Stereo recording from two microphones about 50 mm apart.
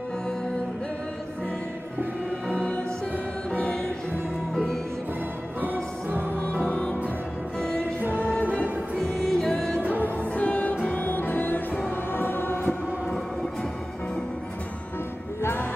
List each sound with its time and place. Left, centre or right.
2.5 s music: left
5.6 s music: right
6.4 s music: left
8.5 s music: right
9.0 s music: centre
9.8 s music: right
10.3 s music: left
12.6 s music: centre